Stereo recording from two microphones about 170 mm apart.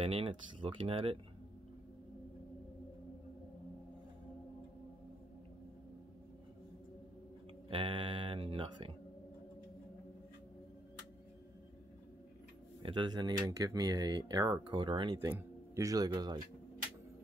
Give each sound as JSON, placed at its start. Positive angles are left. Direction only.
{"t": 0.0, "sound": "speech", "side_deg": -30}
{"t": 7.7, "sound": "speech", "side_deg": -30}
{"t": 12.8, "sound": "speech", "side_deg": -25}
{"t": 15.1, "sound": "speech", "side_deg": -15}